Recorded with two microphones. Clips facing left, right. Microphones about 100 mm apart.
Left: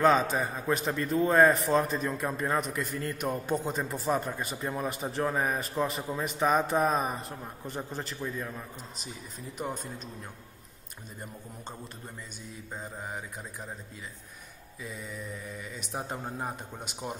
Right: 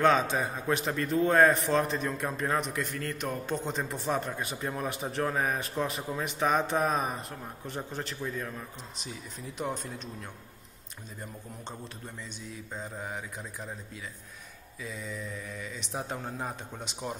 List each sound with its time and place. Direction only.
0.0 s a man's voice: centre (ahead or behind)
12.4 s a man's voice: centre (ahead or behind)
14.8 s a man's voice: 5° left (ahead or behind)